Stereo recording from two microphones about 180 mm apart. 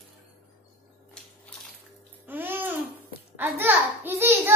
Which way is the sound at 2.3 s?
10° right (ahead or behind).